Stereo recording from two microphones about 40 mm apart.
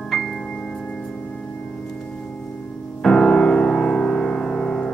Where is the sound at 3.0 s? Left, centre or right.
Centre.